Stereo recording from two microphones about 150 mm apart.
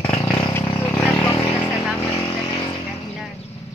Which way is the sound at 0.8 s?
15° left (ahead or behind).